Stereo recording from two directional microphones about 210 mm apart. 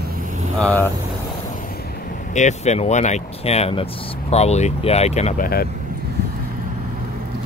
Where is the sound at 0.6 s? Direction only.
5° left (ahead or behind).